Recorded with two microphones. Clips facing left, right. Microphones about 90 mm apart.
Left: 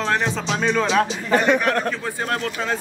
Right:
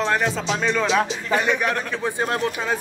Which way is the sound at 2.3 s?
20° right (ahead or behind).